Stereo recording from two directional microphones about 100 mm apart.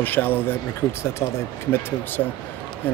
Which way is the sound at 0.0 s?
20° left (ahead or behind).